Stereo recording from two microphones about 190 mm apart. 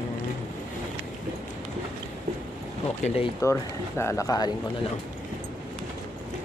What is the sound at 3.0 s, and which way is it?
Speech, 35° left (ahead or behind).